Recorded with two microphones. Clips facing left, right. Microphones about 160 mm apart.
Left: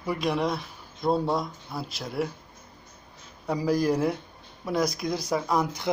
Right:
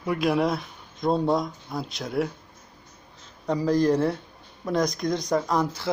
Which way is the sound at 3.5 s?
10° left (ahead or behind).